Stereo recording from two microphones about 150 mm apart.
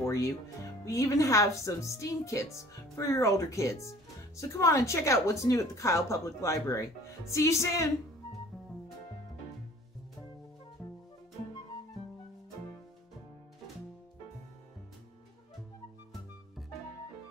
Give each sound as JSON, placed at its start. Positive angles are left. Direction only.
{"t": 0.0, "sound": "music", "side_deg": 20}
{"t": 0.8, "sound": "a woman's voice", "side_deg": 20}